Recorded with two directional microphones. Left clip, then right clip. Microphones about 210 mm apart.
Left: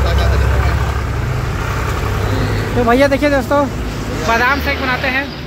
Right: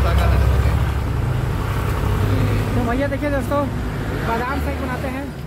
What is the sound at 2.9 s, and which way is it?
Speech, 50° left (ahead or behind).